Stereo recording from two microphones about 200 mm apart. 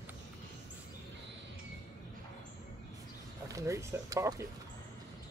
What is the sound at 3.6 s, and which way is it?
Speech, 15° right (ahead or behind).